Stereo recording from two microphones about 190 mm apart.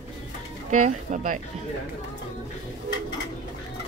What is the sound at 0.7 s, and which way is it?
Speech, 40° right (ahead or behind).